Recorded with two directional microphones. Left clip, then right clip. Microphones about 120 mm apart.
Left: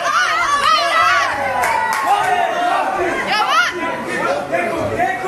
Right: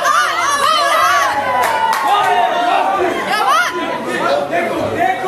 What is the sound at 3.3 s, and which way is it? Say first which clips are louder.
Chatter: right 1 dB; 55° right (ahead or behind).